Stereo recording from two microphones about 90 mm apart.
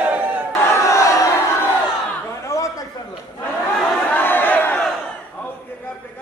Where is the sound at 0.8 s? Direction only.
35° left (ahead or behind).